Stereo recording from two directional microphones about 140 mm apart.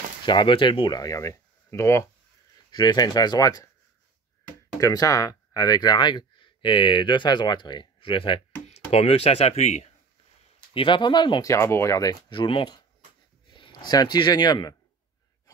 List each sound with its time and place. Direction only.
0.2 s speech: 35° left (ahead or behind); by 9.8 s 55° left (ahead or behind)
10.7 s speech: 35° left (ahead or behind)
11.4 s speech: 20° left (ahead or behind)